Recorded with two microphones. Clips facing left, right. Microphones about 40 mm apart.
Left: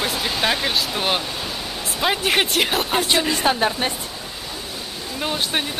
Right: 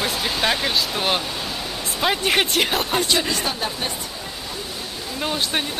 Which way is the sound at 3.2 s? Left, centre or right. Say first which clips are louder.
Left 2 dB; centre.